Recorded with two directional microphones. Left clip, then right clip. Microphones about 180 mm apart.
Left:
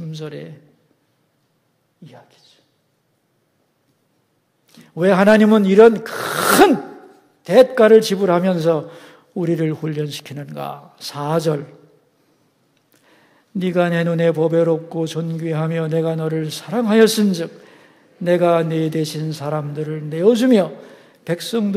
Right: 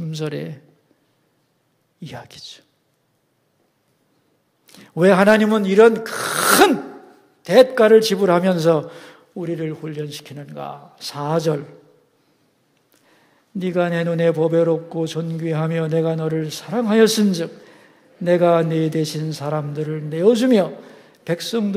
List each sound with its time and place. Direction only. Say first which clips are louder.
0.0 s speech: right 4 dB; 10° right (ahead or behind)
2.0 s speech: right 9 dB; 20° right (ahead or behind)
4.6 s a sound: right 2 dB; 10° right (ahead or behind)
5.1 s a man's voice: left 3 dB; 5° left (ahead or behind)
9.3 s speech: left 5 dB; 15° left (ahead or behind); by 11.7 s centre (ahead or behind)
13.1 s a man's voice: left 3 dB; 5° left (ahead or behind)